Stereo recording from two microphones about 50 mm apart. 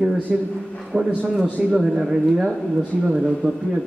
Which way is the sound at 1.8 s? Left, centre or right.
Centre.